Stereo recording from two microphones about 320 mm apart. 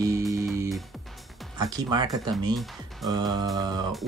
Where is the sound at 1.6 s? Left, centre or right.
Centre.